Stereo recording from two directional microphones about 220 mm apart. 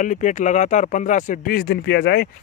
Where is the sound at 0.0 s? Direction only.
35° left (ahead or behind).